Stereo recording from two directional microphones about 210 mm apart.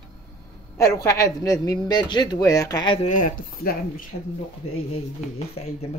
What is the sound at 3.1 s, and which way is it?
Speech, 40° left (ahead or behind).